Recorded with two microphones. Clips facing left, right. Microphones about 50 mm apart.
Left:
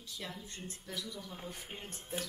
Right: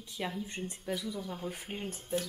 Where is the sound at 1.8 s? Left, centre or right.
Centre.